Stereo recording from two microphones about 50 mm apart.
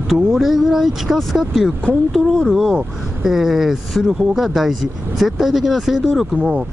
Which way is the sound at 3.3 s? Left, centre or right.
Centre.